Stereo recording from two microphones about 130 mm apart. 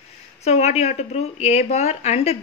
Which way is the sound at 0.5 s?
55° left (ahead or behind).